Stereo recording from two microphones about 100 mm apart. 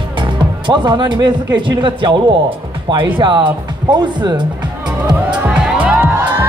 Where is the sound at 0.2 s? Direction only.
50° right (ahead or behind).